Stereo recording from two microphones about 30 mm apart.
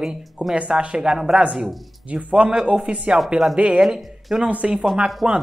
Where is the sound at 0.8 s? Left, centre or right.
Right.